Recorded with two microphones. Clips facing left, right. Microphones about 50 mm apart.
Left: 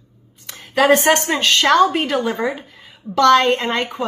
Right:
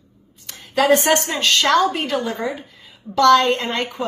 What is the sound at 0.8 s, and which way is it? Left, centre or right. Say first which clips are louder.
Speech: left 2 dB; left.